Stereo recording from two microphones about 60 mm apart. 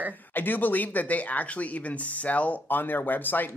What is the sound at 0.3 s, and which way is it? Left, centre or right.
Speech, left.